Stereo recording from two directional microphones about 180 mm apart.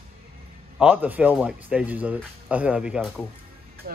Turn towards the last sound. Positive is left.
turn(degrees=-5)  # may be behind; listen again after turning